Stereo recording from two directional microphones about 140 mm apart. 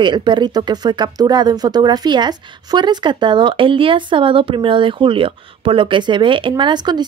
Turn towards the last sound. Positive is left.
turn(degrees=-30)  # may be behind; listen again after turning